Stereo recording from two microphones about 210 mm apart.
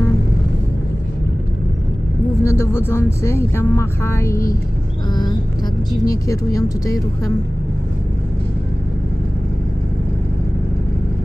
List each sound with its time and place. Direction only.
2.4 s speech: 15° left (ahead or behind)